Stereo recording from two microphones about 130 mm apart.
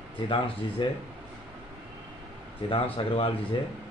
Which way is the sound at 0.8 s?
40° left (ahead or behind).